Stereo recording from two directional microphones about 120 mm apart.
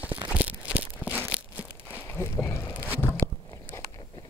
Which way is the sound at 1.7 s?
20° left (ahead or behind).